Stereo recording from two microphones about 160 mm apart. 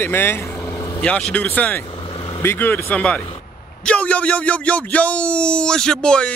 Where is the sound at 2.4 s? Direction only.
15° left (ahead or behind).